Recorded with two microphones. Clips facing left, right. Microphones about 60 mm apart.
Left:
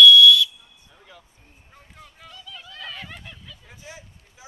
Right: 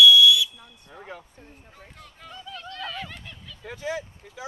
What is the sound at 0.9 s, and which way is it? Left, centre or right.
Speech, right.